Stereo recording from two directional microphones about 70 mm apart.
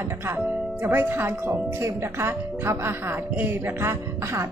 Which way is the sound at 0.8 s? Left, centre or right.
Right.